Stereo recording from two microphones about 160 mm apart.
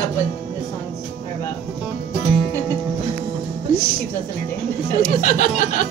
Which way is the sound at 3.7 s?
65° left (ahead or behind).